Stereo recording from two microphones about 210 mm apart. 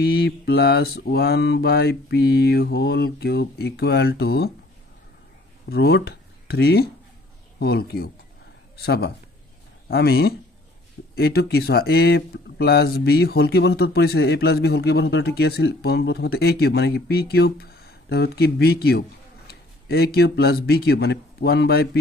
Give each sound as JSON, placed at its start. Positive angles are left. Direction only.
{"t": 0.0, "sound": "speech", "side_deg": 50}
{"t": 5.7, "sound": "speech", "side_deg": 50}